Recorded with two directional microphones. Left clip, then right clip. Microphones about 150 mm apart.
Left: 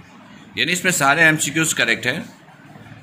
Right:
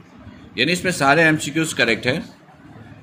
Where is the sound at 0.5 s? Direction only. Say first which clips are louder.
Left 1 dB; 5° right (ahead or behind).